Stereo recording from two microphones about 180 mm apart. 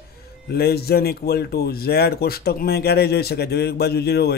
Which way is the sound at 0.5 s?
60° left (ahead or behind).